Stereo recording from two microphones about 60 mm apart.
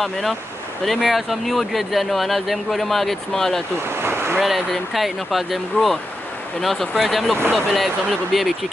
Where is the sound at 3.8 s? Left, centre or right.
Right.